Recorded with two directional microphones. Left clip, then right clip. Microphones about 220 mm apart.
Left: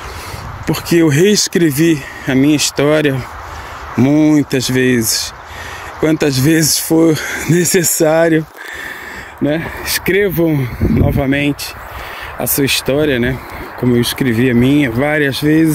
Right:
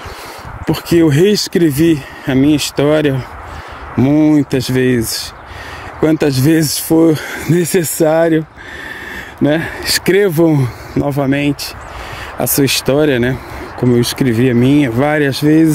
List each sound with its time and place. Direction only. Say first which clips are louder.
0.7 s speech: right 1 dB; 20° right (ahead or behind)
6.0 s speech: right 1 dB; 15° right (ahead or behind)
9.4 s speech: right 3 dB; 25° right (ahead or behind)